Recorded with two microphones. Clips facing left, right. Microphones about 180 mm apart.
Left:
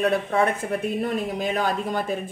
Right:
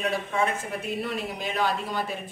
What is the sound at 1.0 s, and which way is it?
Speech, 45° left (ahead or behind).